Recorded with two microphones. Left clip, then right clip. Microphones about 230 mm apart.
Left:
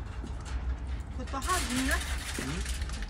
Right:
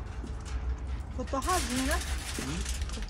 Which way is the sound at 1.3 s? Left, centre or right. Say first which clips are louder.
Right 1 dB; centre.